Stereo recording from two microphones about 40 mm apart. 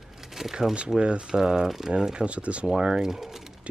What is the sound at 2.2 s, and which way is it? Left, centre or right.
Speech, right.